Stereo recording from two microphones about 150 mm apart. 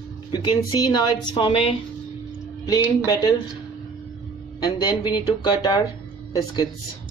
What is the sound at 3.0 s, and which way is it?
Speech, 25° left (ahead or behind).